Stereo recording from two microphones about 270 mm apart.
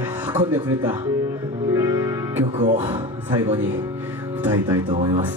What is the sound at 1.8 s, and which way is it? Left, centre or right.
Music, centre.